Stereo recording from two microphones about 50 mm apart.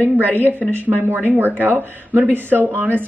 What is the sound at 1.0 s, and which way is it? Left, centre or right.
A woman's voice, right.